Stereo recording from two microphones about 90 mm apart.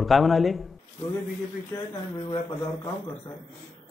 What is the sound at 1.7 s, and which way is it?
Speech, 45° left (ahead or behind).